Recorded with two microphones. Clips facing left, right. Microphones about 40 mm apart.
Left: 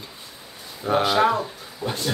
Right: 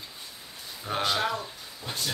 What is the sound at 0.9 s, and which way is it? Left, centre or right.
Speech, centre.